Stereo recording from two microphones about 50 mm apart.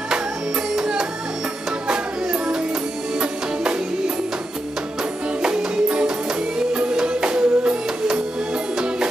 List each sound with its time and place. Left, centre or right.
0.7 s music: centre
5.4 s music: centre